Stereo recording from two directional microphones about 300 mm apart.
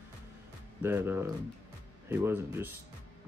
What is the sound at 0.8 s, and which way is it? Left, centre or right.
Speech, centre.